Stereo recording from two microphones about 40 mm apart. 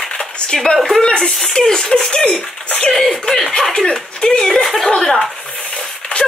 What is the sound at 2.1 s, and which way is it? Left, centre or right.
Speech, left.